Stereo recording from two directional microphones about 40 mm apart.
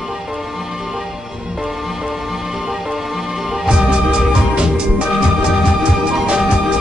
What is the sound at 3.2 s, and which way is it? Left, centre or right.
Music, right.